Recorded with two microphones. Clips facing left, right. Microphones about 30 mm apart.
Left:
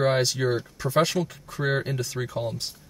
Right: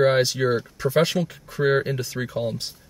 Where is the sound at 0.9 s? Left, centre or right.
Right.